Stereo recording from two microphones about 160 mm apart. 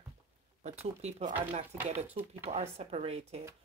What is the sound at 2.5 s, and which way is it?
Speech, 40° right (ahead or behind).